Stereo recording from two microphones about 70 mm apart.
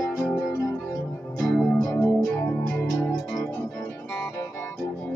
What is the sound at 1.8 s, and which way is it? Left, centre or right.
Music, left.